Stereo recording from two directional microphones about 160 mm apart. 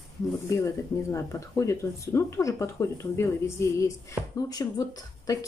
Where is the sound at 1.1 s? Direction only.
20° left (ahead or behind).